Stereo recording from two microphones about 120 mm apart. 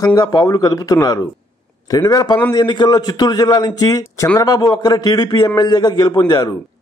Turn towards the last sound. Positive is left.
turn(degrees=35)  # may be behind; listen again after turning